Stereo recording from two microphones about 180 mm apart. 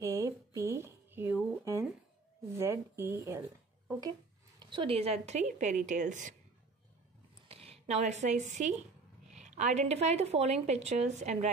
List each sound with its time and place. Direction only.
0.0 s a sound: 15° right (ahead or behind)
4.6 s a woman's voice: 25° right (ahead or behind); by 6.3 s 45° right (ahead or behind)
7.4 s a woman's voice: 35° right (ahead or behind)